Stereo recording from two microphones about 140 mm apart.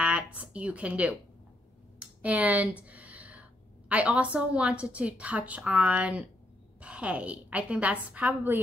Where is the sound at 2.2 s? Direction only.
10° right (ahead or behind).